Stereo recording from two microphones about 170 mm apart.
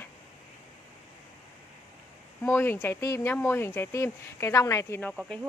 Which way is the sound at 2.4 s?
15° left (ahead or behind).